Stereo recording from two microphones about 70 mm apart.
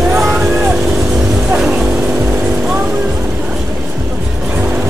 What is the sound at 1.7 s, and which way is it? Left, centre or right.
Vehicle, right.